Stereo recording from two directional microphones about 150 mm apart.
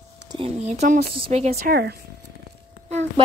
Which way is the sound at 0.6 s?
50° right (ahead or behind).